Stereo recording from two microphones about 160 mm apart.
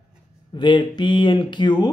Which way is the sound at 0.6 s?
30° left (ahead or behind).